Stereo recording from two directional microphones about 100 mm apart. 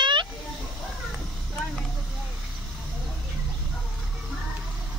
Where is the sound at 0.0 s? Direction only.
50° right (ahead or behind).